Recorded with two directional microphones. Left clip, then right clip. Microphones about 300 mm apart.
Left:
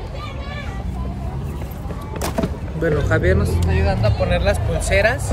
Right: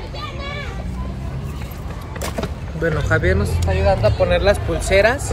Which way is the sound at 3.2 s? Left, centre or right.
Centre.